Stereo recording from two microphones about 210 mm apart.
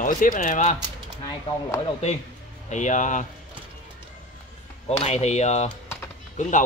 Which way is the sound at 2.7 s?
35° left (ahead or behind).